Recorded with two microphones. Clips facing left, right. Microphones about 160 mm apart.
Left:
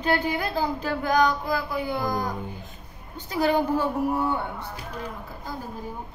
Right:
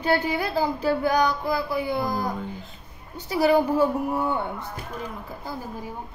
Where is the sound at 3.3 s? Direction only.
10° right (ahead or behind).